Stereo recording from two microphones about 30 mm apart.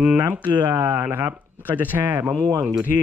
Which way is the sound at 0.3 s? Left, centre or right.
Right.